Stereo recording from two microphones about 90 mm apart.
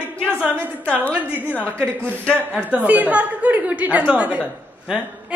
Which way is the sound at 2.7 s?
15° right (ahead or behind).